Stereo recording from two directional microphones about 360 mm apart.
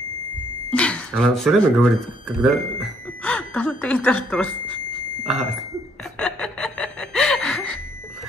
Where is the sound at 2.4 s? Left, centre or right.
Centre.